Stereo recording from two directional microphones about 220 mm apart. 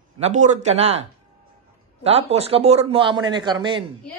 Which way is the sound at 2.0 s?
25° right (ahead or behind).